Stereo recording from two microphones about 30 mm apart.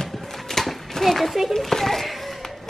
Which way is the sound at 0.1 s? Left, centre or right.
Centre.